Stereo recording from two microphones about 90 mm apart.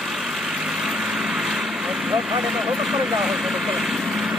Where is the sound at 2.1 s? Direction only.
5° right (ahead or behind).